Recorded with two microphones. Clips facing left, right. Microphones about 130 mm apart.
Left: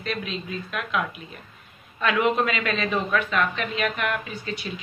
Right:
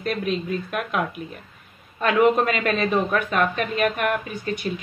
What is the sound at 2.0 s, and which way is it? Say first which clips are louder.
Speech: right 4 dB; 45° right (ahead or behind).